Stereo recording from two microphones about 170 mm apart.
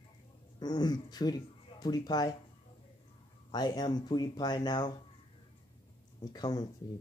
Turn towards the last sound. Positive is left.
turn(degrees=25)  # may be behind; listen again after turning